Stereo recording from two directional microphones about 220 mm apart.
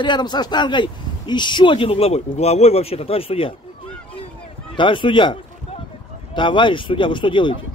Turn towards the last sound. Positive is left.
turn(degrees=20)  # may be behind; listen again after turning